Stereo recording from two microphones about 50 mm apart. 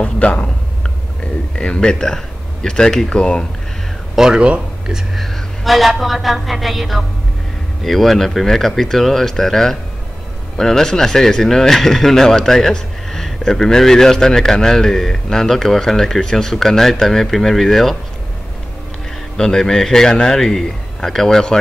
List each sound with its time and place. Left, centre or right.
0.0 s speech: left
1.5 s a man's voice: left
4.1 s a man's voice: centre
19.3 s a man's voice: centre